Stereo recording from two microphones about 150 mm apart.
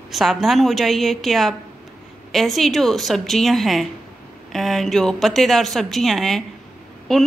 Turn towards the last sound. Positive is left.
turn(degrees=0)  # may be behind; listen again after turning